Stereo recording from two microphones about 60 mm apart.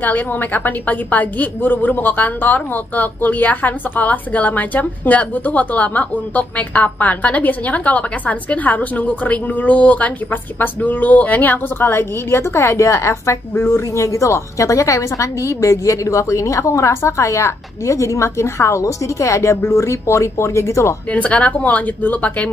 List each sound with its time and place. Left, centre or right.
0.0 s a woman's voice: left
11.9 s a woman's voice: left
21.1 s a woman's voice: left